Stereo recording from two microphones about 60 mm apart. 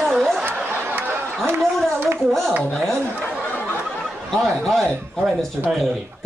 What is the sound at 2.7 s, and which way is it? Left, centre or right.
Speech, centre.